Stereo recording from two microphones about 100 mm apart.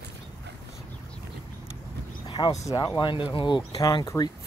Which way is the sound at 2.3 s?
50° left (ahead or behind).